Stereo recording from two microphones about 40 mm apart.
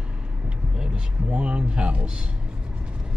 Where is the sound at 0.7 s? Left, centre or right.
Right.